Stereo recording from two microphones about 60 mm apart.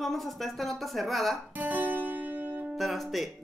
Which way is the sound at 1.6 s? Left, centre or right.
Right.